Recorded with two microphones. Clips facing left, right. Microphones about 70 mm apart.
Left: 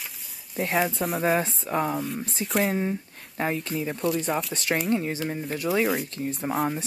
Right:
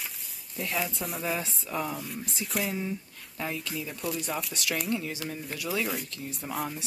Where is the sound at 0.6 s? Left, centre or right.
Left.